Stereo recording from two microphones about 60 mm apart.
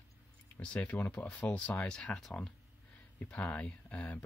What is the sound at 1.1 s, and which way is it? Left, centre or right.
Speech, centre.